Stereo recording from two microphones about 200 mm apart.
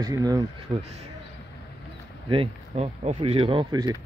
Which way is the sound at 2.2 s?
30° right (ahead or behind).